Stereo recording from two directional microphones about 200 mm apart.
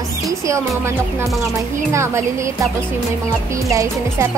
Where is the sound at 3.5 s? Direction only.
15° right (ahead or behind).